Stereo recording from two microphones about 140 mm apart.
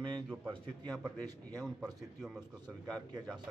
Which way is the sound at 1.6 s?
5° right (ahead or behind).